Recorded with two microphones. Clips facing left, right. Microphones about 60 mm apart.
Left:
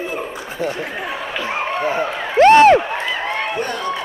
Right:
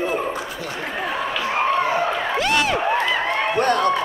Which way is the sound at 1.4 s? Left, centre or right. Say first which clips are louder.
Right 1 dB; left.